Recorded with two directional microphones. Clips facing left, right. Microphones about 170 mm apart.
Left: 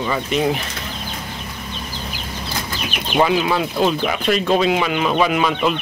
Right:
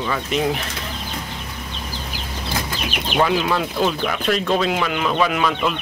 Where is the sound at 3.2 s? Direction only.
5° left (ahead or behind).